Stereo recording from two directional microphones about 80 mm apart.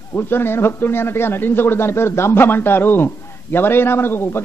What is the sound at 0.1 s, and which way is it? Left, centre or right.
A man's voice, left.